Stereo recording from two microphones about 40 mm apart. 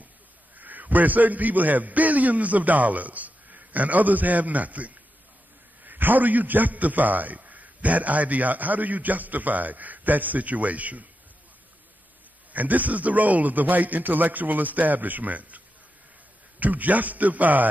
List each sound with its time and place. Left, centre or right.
0.6 s a man's voice: right
5.9 s a man's voice: right
12.5 s a man's voice: right